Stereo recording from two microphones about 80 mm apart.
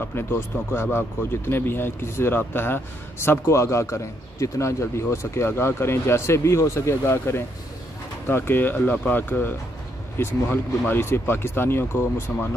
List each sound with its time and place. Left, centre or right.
0.1 s speech: left